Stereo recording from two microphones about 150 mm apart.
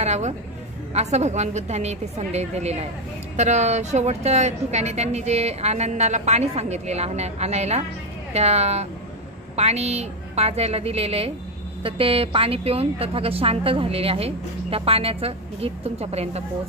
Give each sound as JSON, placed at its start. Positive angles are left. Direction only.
{"t": 0.0, "sound": "a woman's voice", "side_deg": -50}